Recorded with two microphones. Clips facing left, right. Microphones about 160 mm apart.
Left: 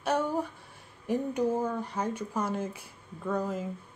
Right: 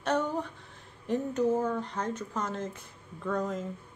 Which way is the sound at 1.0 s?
10° left (ahead or behind).